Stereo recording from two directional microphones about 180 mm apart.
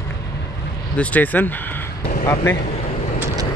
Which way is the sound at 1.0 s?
10° left (ahead or behind).